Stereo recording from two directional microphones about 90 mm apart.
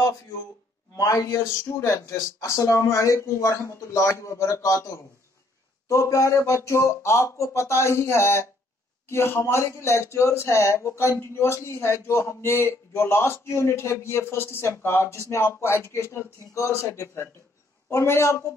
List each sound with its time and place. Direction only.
0.9 s speech: 35° left (ahead or behind)